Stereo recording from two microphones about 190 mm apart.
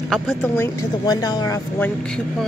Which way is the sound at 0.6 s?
20° left (ahead or behind).